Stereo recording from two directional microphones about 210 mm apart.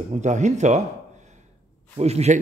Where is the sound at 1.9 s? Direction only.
30° right (ahead or behind).